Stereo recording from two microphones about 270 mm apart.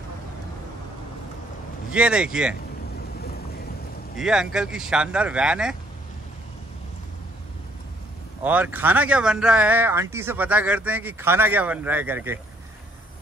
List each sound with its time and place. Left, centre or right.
1.9 s speech: centre
3.2 s boat: left
4.2 s speech: centre
8.5 s speech: centre